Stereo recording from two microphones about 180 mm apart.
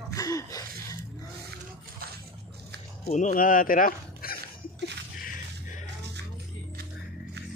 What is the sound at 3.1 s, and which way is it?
Speech, 45° left (ahead or behind).